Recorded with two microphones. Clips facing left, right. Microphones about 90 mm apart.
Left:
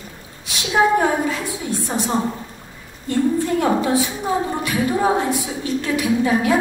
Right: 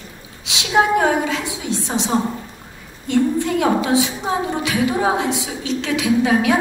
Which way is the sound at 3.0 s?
90° right.